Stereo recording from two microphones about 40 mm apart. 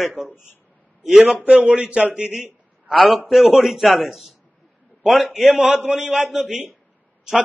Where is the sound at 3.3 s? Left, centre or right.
Centre.